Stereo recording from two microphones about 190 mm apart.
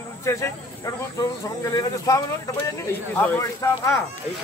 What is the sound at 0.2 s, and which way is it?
Speech, 15° left (ahead or behind).